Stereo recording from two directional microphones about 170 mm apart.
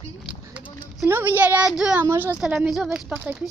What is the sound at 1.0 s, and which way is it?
Speech, 10° right (ahead or behind).